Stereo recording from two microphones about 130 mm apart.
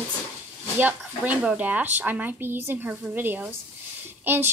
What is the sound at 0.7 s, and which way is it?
Speech, 15° right (ahead or behind).